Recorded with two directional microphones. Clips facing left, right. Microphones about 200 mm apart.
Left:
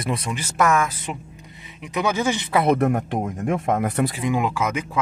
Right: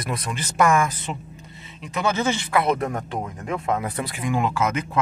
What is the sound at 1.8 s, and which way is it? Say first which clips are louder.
Speech: left 1 dB; 15° left (ahead or behind).